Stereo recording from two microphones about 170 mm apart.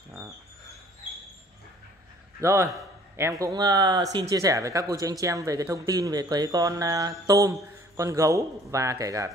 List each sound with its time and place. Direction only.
2.4 s a man's voice: 15° right (ahead or behind)